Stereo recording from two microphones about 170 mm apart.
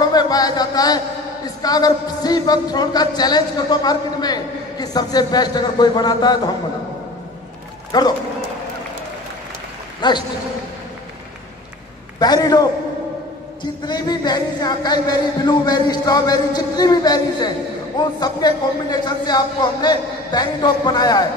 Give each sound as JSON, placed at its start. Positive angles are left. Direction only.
{"t": 0.1, "sound": "a sound", "side_deg": 25}
{"t": 1.6, "sound": "speech", "side_deg": 20}
{"t": 7.9, "sound": "speech", "side_deg": 25}
{"t": 10.0, "sound": "speech", "side_deg": 25}
{"t": 12.2, "sound": "speech", "side_deg": 25}
{"t": 13.8, "sound": "speech", "side_deg": 25}